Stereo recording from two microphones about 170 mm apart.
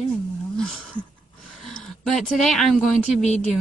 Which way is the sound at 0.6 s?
5° left (ahead or behind).